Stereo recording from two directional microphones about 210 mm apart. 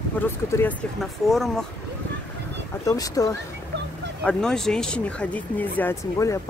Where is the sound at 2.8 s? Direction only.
15° left (ahead or behind).